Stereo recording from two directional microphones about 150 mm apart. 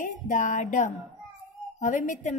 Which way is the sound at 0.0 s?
60° left (ahead or behind).